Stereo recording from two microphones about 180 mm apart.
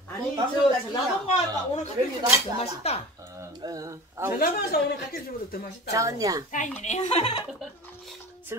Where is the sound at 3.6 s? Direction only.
20° right (ahead or behind).